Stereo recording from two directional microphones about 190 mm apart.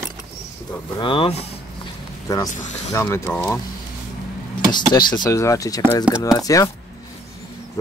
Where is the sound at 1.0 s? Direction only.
30° left (ahead or behind).